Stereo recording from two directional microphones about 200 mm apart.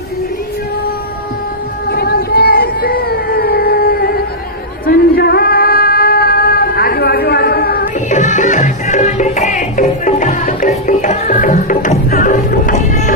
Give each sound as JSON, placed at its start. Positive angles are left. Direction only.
{"t": 1.9, "sound": "a sound", "side_deg": 50}
{"t": 4.8, "sound": "female singing", "side_deg": 50}
{"t": 10.9, "sound": "music", "side_deg": 40}